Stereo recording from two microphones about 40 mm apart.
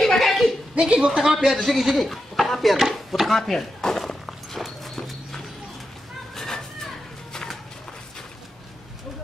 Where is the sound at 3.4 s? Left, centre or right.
Centre.